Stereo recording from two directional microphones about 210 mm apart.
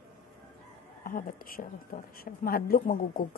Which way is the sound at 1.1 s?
40° left (ahead or behind).